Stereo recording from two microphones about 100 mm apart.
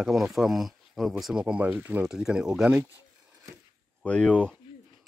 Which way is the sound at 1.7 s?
20° right (ahead or behind).